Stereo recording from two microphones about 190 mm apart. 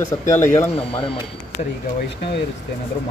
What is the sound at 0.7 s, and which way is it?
Speech, 30° left (ahead or behind).